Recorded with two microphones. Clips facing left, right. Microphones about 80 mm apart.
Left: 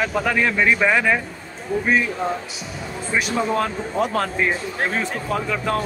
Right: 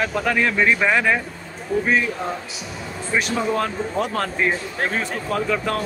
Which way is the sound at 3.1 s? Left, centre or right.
Centre.